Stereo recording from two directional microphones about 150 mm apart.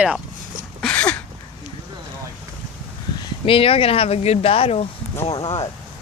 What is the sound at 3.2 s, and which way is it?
Speech, 35° left (ahead or behind).